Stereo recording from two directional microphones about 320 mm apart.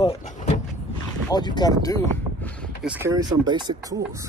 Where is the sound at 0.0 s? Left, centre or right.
Centre.